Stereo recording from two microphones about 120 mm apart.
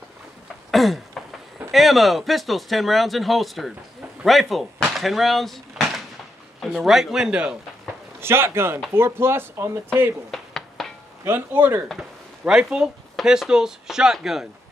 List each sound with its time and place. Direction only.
0.7 s a sound: centre (ahead or behind)
1.7 s speech: centre (ahead or behind)
8.2 s speech: 20° right (ahead or behind)
10.3 s a sound: centre (ahead or behind)
11.2 s speech: 15° right (ahead or behind)
11.9 s speech: 5° right (ahead or behind)